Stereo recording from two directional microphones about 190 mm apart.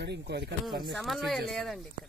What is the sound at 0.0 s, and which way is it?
Speech, 60° right (ahead or behind).